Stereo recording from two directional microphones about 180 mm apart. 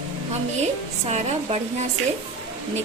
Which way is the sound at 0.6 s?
40° right (ahead or behind).